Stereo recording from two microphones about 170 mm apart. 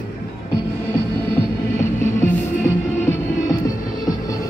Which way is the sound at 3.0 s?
15° left (ahead or behind).